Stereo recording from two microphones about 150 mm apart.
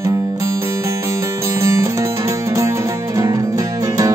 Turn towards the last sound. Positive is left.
turn(degrees=-25)  # may be behind; listen again after turning